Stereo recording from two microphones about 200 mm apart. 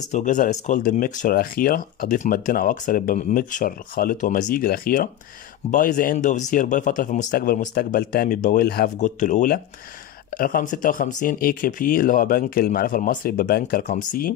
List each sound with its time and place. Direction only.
0.1 s speech: 40° left (ahead or behind)
8.9 s speech: 35° left (ahead or behind)